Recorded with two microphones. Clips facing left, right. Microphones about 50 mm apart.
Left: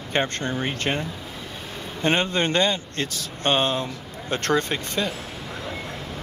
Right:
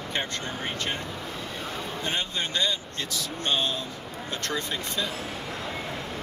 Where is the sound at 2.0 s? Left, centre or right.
Left.